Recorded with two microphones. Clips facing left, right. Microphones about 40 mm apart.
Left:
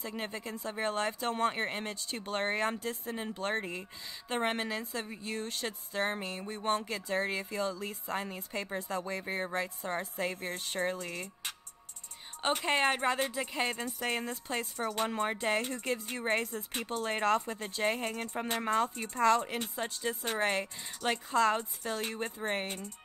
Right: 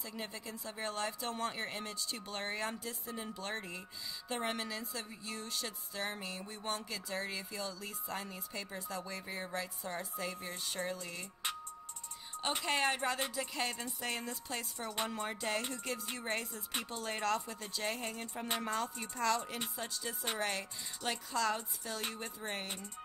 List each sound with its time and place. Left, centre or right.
0.0 s speech: left
12.6 s speech: left